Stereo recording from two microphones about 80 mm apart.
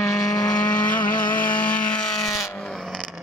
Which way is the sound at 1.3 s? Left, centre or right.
Centre.